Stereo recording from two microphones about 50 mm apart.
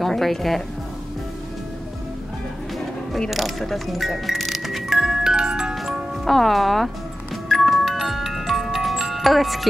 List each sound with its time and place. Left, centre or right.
0.0 s speech: centre
3.3 s music: centre
5.3 s glockenspiel: centre
5.8 s music: centre